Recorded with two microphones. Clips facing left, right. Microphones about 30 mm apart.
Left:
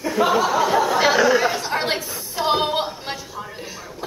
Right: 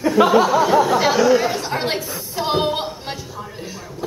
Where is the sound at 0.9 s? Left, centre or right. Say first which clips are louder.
Right 1 dB; centre.